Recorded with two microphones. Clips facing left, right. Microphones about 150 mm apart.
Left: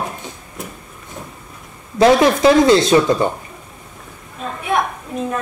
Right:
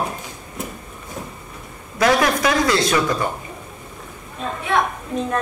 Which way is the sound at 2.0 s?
25° left (ahead or behind).